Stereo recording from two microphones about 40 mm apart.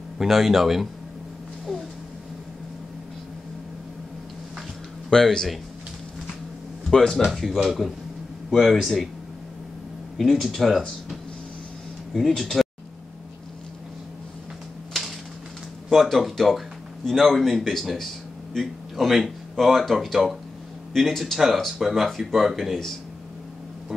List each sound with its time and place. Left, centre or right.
0.3 s speech: centre
1.7 s a sound: centre
5.1 s speech: centre
6.9 s speech: centre
7.2 s speech: centre
10.1 s speech: centre
12.1 s speech: centre
15.9 s a man's voice: centre